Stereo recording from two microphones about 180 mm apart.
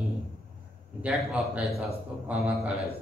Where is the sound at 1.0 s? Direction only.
5° right (ahead or behind).